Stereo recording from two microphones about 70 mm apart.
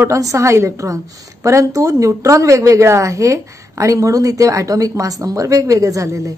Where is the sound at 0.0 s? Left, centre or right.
Right.